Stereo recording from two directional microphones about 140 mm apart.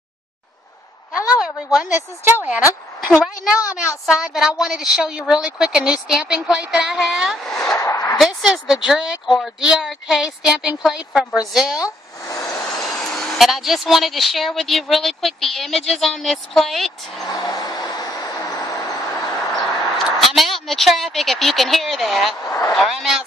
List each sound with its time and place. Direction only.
1.4 s a woman's voice: 5° right (ahead or behind)
7.7 s a sound: 20° left (ahead or behind)
8.2 s a woman's voice: centre (ahead or behind)
11.8 s a sound: 20° left (ahead or behind)
12.5 s speech: 5° left (ahead or behind)
17.3 s vehicle: 30° left (ahead or behind)
20.0 s a woman's voice: centre (ahead or behind)
22.4 s speech: 20° left (ahead or behind)
22.8 s a woman's voice: centre (ahead or behind)